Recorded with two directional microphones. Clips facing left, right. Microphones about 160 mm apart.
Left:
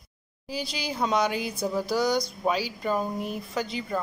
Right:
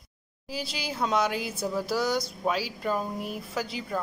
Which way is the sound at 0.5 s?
5° right (ahead or behind).